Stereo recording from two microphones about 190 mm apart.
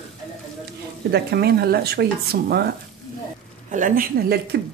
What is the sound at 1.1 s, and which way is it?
A woman's voice, 55° right (ahead or behind).